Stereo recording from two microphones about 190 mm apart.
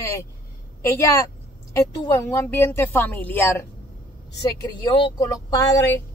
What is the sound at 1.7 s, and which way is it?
Speech, 15° left (ahead or behind).